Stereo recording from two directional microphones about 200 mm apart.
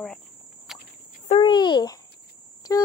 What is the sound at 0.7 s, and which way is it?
Walk, centre (ahead or behind).